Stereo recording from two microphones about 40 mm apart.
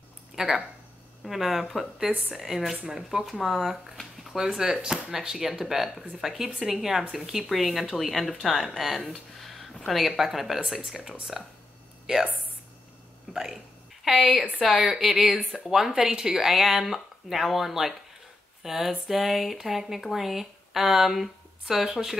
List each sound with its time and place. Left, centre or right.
0.4 s speech: centre
13.3 s speech: centre